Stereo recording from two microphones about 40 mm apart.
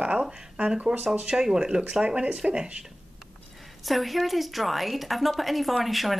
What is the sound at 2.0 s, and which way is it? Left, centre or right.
Speech, right.